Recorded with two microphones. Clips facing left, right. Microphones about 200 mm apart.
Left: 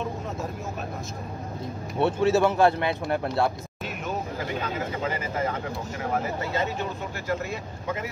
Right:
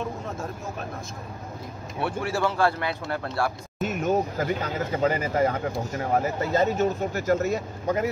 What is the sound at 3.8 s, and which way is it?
Vehicle, 45° right (ahead or behind).